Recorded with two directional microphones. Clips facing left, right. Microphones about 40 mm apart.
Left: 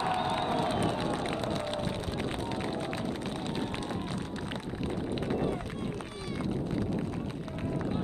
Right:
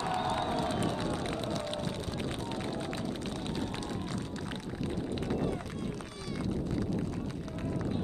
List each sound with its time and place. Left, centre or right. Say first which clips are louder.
0.0 s crowd: left 2 dB; left
2.5 s run: left 2 dB; left